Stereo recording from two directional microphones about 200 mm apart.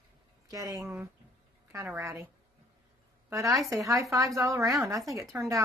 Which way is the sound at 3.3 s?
15° right (ahead or behind).